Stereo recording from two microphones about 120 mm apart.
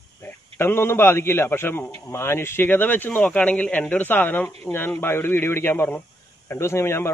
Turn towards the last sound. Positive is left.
turn(degrees=20)  # may be behind; listen again after turning